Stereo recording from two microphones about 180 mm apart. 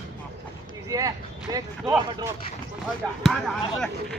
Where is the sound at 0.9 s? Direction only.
20° right (ahead or behind).